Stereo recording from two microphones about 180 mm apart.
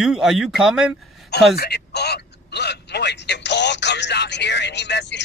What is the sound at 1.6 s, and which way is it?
Speech, 60° left (ahead or behind).